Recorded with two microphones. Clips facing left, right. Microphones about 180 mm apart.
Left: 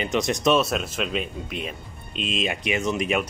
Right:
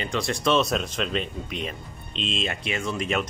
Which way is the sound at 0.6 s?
5° left (ahead or behind).